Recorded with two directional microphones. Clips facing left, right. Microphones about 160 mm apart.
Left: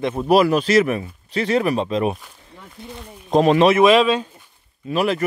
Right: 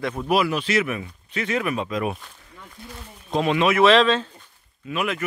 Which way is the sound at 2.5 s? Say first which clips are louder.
Left 5 dB; 20° left (ahead or behind).